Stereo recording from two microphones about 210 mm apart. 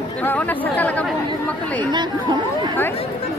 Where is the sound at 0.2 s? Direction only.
10° left (ahead or behind).